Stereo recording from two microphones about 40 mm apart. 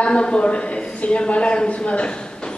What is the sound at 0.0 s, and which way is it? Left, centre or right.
Speech, left.